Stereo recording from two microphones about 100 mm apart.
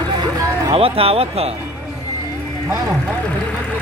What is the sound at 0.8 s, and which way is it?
Speech, 70° right (ahead or behind).